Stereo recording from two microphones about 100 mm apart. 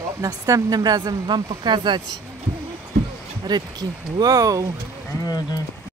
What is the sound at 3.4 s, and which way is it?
A woman's voice, 45° right (ahead or behind).